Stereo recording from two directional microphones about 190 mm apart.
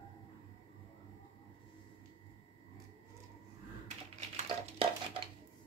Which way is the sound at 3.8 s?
40° right (ahead or behind).